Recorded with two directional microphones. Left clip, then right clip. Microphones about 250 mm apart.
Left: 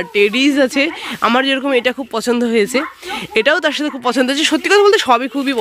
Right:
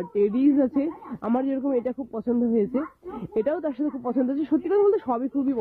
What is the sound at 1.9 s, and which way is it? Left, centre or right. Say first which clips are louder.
Speech: left 11 dB; left.